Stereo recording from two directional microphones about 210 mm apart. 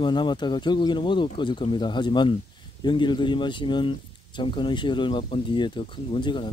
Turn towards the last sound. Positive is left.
turn(degrees=20)  # may be behind; listen again after turning